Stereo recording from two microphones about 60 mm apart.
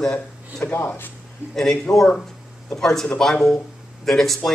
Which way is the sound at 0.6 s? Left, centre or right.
Left.